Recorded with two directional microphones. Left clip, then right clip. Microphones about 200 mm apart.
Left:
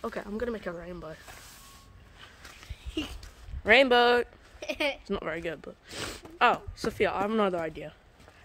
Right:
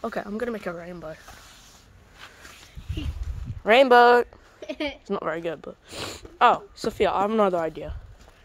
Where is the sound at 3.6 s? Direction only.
15° right (ahead or behind).